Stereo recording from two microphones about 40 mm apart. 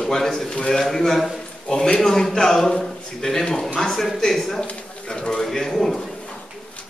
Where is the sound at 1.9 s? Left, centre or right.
Centre.